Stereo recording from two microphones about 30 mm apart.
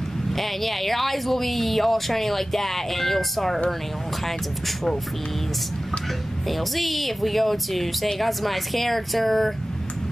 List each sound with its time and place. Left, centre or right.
0.4 s speech: centre
6.5 s speech: centre